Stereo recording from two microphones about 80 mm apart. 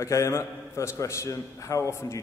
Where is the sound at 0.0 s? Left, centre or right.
Left.